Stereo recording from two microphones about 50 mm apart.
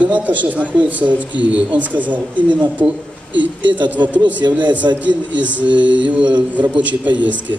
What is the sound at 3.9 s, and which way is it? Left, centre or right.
A man's voice, right.